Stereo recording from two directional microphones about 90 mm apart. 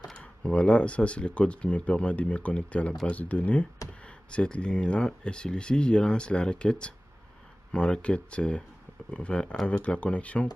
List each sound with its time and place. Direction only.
0.1 s speech: 10° left (ahead or behind)